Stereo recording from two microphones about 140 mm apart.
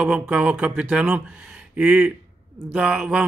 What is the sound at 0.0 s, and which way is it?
A man's voice, 10° right (ahead or behind).